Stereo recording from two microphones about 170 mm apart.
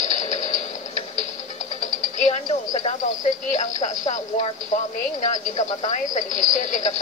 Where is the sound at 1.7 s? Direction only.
45° left (ahead or behind).